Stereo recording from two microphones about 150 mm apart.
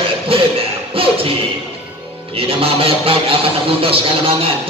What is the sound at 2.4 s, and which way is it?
A man's voice, 40° right (ahead or behind).